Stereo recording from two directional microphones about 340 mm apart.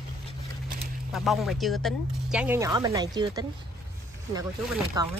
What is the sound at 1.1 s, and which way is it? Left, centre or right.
Speech, centre.